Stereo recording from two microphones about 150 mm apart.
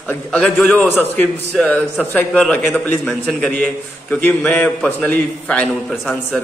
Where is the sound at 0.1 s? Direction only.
10° left (ahead or behind).